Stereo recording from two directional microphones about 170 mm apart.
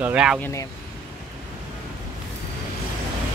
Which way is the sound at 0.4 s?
15° left (ahead or behind).